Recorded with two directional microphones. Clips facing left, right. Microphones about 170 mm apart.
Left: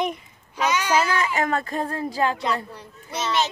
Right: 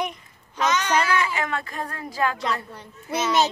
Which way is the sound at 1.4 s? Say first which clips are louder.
Left 4 dB; 40° left (ahead or behind).